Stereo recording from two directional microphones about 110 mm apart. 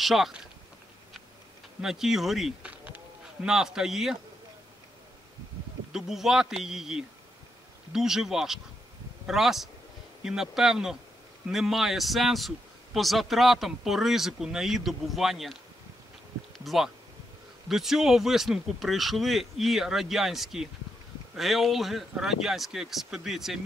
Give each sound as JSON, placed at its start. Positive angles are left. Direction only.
{"t": 0.0, "sound": "a man's voice", "side_deg": 0}
{"t": 1.8, "sound": "a man's voice", "side_deg": -5}
{"t": 5.9, "sound": "a man's voice", "side_deg": -5}
{"t": 16.5, "sound": "a man's voice", "side_deg": 0}